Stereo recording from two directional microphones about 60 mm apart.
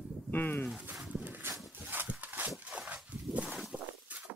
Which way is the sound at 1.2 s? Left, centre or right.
Right.